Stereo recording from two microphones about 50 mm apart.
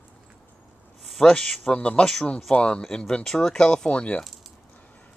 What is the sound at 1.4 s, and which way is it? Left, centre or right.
Speech, centre.